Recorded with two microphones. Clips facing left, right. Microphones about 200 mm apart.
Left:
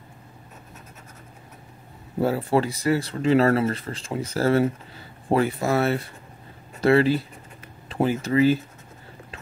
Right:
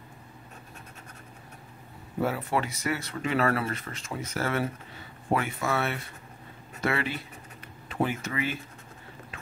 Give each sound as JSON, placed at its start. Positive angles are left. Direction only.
{"t": 2.1, "sound": "speech", "side_deg": 30}